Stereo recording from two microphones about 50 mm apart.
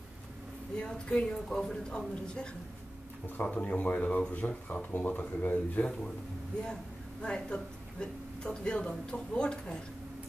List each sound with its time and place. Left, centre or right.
0.7 s speech: centre
3.4 s speech: left
6.6 s speech: centre